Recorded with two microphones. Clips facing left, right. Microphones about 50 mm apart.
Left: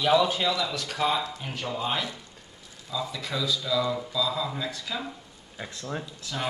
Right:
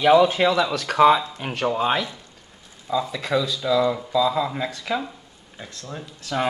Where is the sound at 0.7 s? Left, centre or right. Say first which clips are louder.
Right 11 dB; right.